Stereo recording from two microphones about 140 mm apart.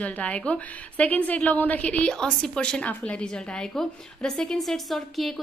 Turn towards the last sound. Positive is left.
turn(degrees=0)  # may be behind; listen again after turning